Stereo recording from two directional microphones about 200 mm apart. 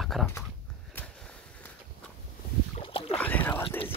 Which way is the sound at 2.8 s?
30° left (ahead or behind).